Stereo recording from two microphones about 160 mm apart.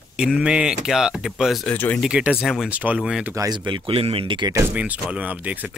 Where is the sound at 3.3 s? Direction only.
25° right (ahead or behind).